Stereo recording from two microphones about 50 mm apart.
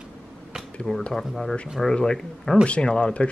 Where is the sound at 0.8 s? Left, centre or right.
Centre.